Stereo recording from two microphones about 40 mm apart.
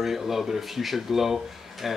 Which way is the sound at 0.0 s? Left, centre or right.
Centre.